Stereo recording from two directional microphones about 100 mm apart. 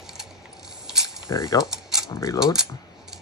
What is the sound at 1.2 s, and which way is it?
Mechanisms, 35° left (ahead or behind).